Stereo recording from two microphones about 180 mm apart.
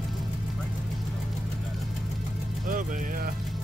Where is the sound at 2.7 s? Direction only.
45° right (ahead or behind).